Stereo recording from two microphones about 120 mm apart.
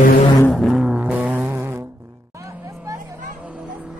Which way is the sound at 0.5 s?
Centre (ahead or behind).